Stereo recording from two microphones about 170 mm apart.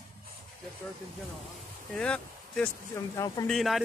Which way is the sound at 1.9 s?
5° left (ahead or behind).